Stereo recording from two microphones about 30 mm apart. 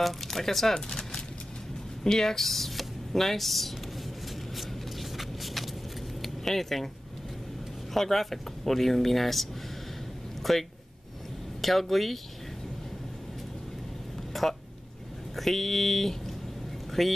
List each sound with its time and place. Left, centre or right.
0.0 s speech: centre
0.7 s a sound: left
2.0 s speech: centre
2.4 s speech: centre
5.1 s vehicle: centre
6.2 s speech: centre
7.9 s speech: centre
10.5 s speech: centre
14.3 s speech: centre